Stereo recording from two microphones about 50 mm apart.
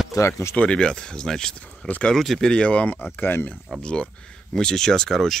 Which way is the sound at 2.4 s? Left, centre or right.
Left.